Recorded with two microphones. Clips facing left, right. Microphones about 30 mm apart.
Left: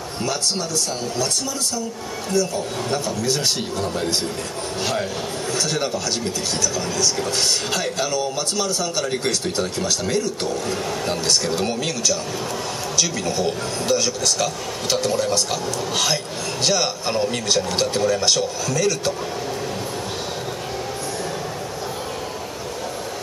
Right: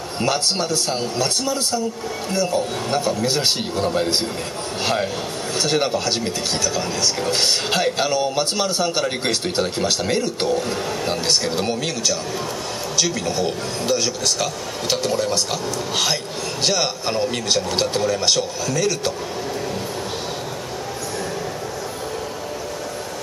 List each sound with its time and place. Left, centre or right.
0.2 s a man's voice: right
5.6 s a man's voice: right
10.7 s a man's voice: centre